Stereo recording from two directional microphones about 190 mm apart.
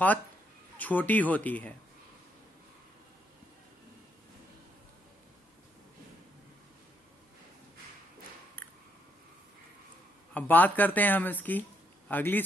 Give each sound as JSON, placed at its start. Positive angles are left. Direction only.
{"t": 0.7, "sound": "speech", "side_deg": 10}
{"t": 10.3, "sound": "speech", "side_deg": 10}